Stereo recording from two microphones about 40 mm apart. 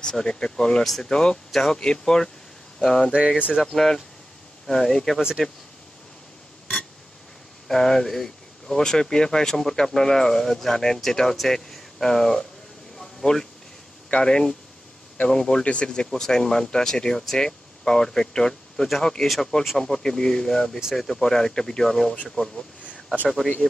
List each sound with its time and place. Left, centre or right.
0.0 s speech: centre
0.8 s speech: centre
1.1 s speech: centre
3.1 s speech: right
3.7 s speech: centre
7.6 s a man's voice: centre; by 15.9 s left
15.9 s speech: centre
19.2 s speech: centre
19.8 s speech: centre
22.4 s speech: left
23.2 s speech: centre